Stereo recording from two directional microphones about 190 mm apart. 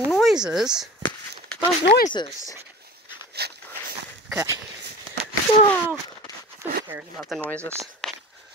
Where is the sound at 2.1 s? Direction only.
20° left (ahead or behind).